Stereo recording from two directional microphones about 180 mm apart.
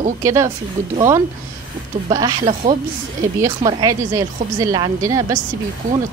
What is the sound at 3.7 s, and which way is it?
Speech, 20° right (ahead or behind).